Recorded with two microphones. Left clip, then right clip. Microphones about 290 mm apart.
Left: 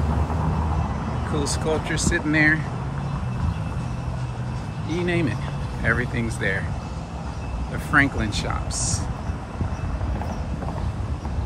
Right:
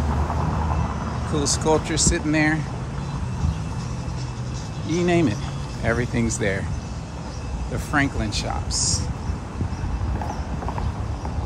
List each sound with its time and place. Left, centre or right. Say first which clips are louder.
1.4 s speech: right 5 dB; centre
4.9 s speech: right 4 dB; centre
7.9 s speech: left 3 dB; centre